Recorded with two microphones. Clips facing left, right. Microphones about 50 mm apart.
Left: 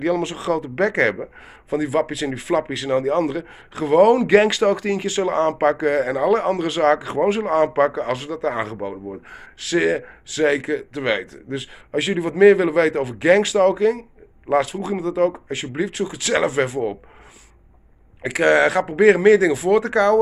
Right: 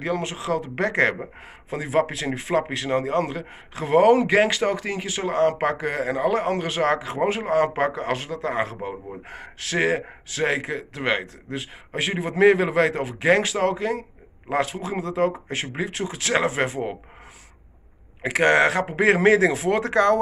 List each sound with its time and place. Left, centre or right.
0.0 s speech: right
4.3 s speech: centre
9.3 s speech: right
18.2 s speech: right